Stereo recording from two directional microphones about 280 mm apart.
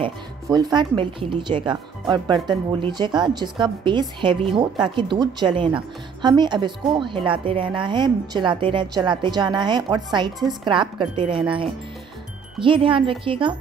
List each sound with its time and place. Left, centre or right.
0.0 s speech: centre